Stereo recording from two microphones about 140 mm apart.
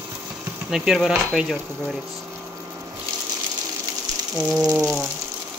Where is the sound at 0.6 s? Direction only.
5° right (ahead or behind).